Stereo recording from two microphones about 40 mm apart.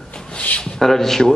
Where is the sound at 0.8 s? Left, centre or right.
Centre.